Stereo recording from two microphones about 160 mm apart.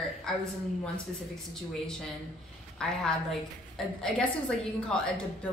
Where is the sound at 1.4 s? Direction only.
5° left (ahead or behind).